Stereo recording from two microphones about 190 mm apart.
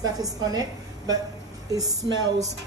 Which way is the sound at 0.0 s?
20° right (ahead or behind).